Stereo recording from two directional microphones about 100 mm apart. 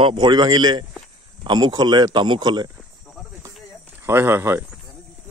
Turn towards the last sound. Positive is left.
turn(degrees=-25)  # may be behind; listen again after turning